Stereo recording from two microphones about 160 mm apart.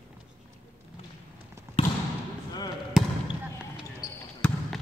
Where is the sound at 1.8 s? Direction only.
35° left (ahead or behind).